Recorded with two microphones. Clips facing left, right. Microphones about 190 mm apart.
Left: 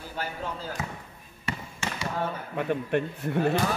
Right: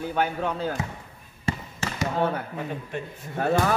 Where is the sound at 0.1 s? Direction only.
65° right (ahead or behind).